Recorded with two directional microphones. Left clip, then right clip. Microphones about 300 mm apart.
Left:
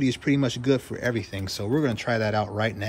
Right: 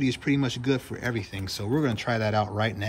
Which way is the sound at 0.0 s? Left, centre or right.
Centre.